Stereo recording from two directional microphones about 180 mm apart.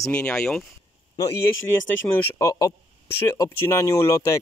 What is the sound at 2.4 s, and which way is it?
Speech, 20° left (ahead or behind).